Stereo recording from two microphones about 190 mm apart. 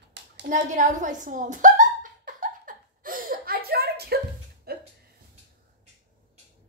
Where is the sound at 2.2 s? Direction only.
45° right (ahead or behind).